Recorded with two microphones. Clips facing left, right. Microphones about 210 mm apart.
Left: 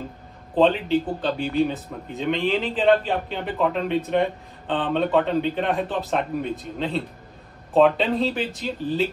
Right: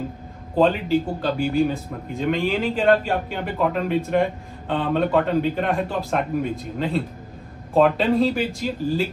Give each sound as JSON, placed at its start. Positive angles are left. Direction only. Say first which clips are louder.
{"t": 0.6, "sound": "a man's voice", "louder": "even", "side_deg": -5}